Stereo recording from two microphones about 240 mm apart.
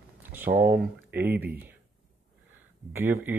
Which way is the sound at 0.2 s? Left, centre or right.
Centre.